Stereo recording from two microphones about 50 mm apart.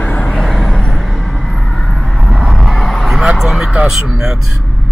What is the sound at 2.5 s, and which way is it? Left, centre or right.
Vehicle, centre.